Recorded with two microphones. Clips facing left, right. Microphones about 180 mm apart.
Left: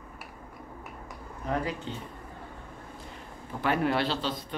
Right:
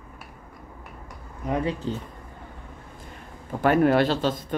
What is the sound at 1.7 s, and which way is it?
Speech, 35° right (ahead or behind).